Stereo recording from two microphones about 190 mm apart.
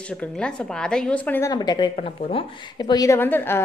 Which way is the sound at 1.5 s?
20° left (ahead or behind).